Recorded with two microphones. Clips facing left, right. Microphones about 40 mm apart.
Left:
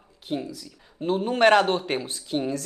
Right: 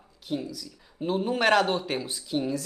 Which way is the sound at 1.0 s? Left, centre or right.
Centre.